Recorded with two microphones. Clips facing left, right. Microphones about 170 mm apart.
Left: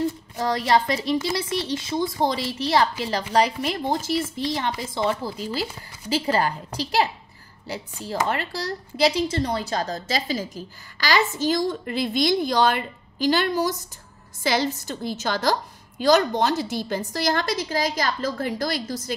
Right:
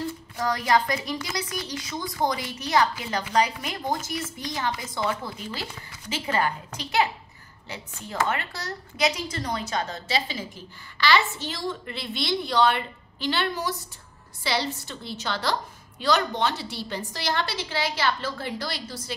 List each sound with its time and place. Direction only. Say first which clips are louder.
0.4 s a woman's voice: left 2 dB; 25° left (ahead or behind); by 19.1 s 45° left (ahead or behind)